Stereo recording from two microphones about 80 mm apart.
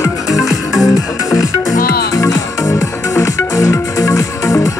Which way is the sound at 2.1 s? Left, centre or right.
Left.